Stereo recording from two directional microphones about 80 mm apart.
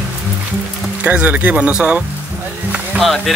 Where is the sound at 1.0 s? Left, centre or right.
Centre.